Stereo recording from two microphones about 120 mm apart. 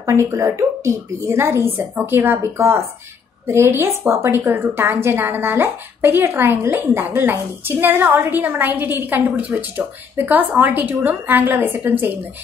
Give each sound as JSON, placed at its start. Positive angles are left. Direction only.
{"t": 0.0, "sound": "a woman's voice", "side_deg": -25}